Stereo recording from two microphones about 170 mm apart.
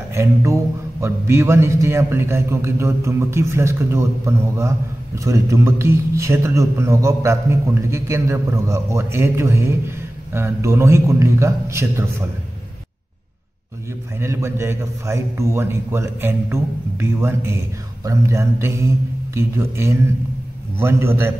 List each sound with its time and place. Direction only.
0.1 s a man's voice: 15° right (ahead or behind)
14.1 s a man's voice: 15° right (ahead or behind)